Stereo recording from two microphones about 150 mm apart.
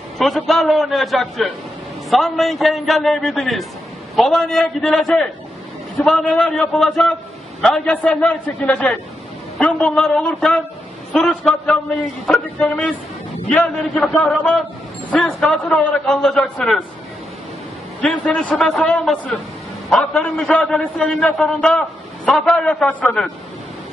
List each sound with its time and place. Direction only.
0.2 s a man's voice: centre (ahead or behind)
18.0 s a man's voice: 5° left (ahead or behind)